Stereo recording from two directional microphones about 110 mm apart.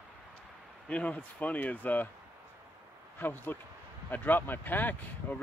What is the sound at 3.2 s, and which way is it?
Speech, 20° left (ahead or behind).